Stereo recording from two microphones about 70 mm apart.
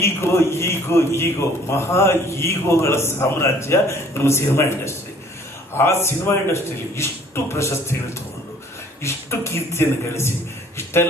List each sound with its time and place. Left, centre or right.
0.0 s a man's voice: left